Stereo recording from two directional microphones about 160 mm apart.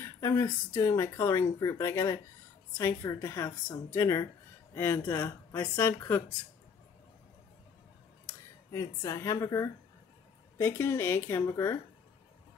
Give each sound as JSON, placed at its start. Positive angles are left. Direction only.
{"t": 0.0, "sound": "speech", "side_deg": 15}
{"t": 8.3, "sound": "speech", "side_deg": 20}